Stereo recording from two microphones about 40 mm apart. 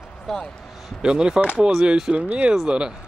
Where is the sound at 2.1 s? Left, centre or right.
Right.